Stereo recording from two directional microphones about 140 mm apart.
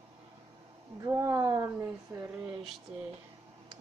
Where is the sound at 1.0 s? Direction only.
20° right (ahead or behind).